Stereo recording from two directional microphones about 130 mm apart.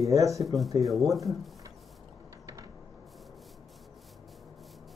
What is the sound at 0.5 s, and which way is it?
Speech, centre (ahead or behind).